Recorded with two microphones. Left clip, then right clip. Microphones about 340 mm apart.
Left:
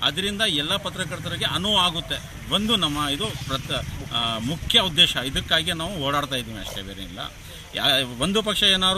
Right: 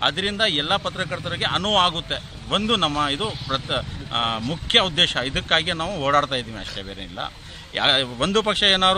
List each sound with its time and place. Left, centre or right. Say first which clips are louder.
0.2 s speech: right 2 dB; centre
7.7 s speech: right 2 dB; centre